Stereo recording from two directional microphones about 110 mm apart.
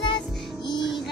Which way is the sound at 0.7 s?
40° left (ahead or behind).